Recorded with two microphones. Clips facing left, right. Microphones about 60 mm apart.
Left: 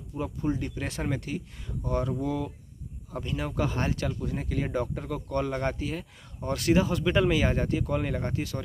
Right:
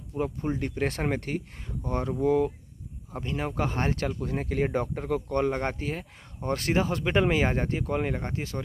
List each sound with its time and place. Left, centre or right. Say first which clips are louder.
0.1 s speech: right 1 dB; right